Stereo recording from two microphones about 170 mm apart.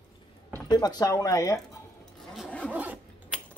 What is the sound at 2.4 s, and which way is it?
Zipper, 5° left (ahead or behind).